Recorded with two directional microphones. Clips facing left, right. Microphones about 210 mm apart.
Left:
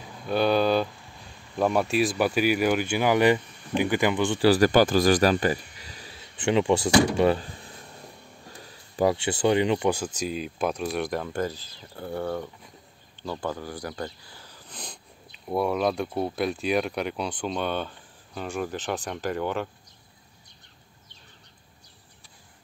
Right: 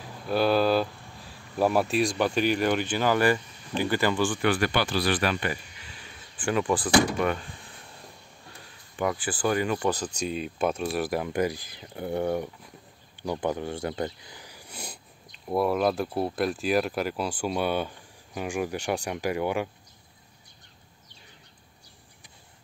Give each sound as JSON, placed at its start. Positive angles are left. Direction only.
{"t": 0.3, "sound": "speech", "side_deg": 0}
{"t": 4.4, "sound": "speech", "side_deg": 40}
{"t": 6.3, "sound": "speech", "side_deg": 25}